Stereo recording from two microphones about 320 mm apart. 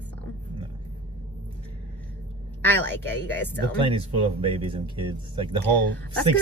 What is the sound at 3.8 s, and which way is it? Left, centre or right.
Speech, centre.